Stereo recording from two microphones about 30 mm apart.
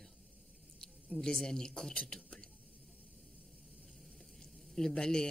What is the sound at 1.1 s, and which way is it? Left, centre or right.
Speech, centre.